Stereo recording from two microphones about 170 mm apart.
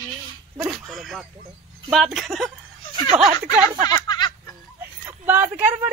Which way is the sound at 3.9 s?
25° left (ahead or behind).